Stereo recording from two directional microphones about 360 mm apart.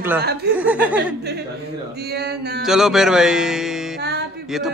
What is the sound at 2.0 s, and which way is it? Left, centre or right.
Mantra, right.